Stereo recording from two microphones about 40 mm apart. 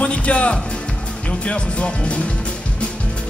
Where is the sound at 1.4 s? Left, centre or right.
Left.